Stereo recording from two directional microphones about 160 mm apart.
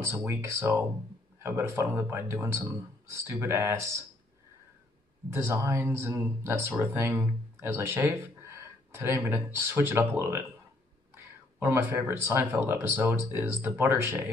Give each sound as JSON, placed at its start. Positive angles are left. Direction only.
{"t": 0.0, "sound": "speech", "side_deg": -15}
{"t": 5.3, "sound": "speech", "side_deg": -15}